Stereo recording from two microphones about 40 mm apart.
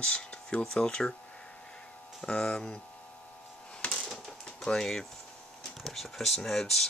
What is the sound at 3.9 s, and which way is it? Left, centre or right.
Typewriter, centre.